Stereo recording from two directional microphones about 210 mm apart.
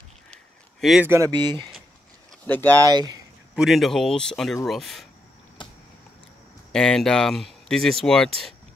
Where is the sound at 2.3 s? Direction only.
10° left (ahead or behind).